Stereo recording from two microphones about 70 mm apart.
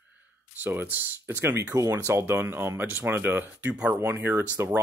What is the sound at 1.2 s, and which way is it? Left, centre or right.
Speech, right.